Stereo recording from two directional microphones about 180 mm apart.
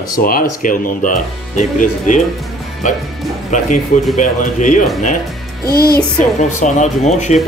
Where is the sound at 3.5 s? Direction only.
45° left (ahead or behind).